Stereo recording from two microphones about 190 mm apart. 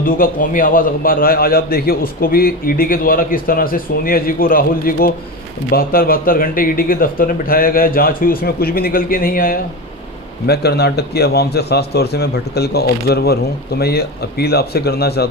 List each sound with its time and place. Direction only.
0.0 s a man's voice: 45° left (ahead or behind)